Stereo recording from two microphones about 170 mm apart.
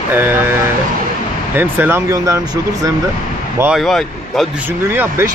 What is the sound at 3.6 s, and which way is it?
Speech, 5° right (ahead or behind).